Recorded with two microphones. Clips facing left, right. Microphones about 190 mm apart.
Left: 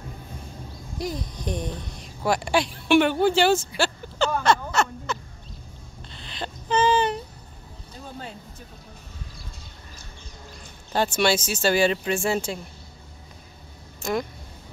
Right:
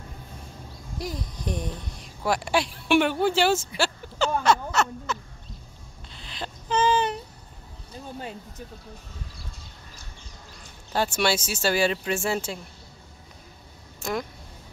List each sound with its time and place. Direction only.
0.9 s speech: centre (ahead or behind)
6.0 s a sound: 5° right (ahead or behind)
11.1 s speech: 5° right (ahead or behind)
14.0 s speech: centre (ahead or behind)